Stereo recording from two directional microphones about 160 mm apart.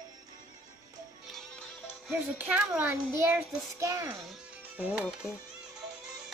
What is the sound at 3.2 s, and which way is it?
Child singing, 20° right (ahead or behind).